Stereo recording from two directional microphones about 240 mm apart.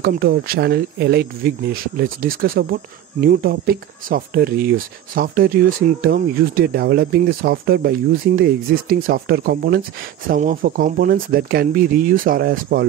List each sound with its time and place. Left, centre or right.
0.0 s speech: right